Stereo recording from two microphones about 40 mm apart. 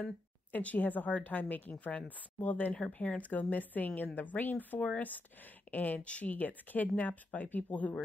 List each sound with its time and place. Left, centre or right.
0.5 s a woman's voice: left